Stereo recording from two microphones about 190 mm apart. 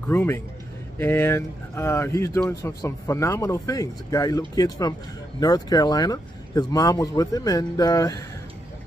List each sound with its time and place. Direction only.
0.1 s speech: 10° left (ahead or behind)